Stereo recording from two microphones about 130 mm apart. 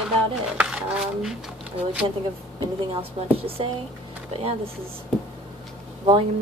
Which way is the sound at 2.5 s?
45° right (ahead or behind).